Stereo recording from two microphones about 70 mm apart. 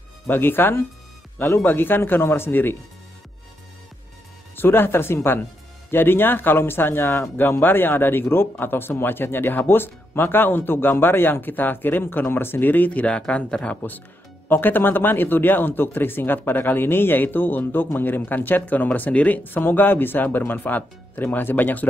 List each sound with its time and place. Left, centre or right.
0.3 s speech: left
4.6 s speech: left; by 13.7 s centre
14.5 s a man's voice: left